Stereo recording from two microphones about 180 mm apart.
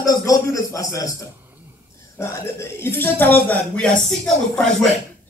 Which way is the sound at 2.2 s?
15° left (ahead or behind).